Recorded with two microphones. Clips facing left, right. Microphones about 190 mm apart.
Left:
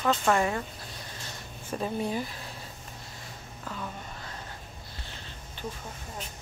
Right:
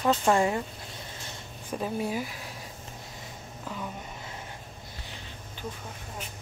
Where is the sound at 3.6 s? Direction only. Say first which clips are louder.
Right 1 dB; 15° right (ahead or behind).